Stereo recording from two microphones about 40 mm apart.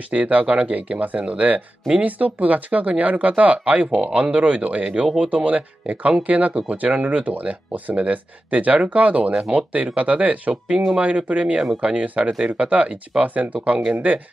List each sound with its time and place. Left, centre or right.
0.1 s speech: right